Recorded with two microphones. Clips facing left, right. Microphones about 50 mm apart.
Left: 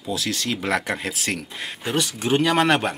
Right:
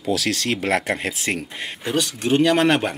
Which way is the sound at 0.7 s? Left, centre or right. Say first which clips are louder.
Right 2 dB; right.